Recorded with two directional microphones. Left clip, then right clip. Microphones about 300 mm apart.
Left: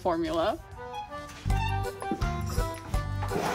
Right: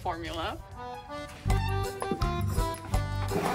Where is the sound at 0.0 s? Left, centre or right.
Left.